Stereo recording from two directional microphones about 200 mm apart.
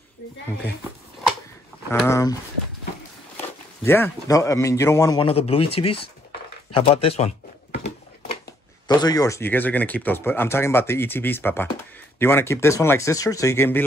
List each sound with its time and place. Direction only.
2.0 s speech: 15° left (ahead or behind)
3.3 s speech: 10° left (ahead or behind); by 7.3 s 30° left (ahead or behind)
8.8 s speech: 20° left (ahead or behind)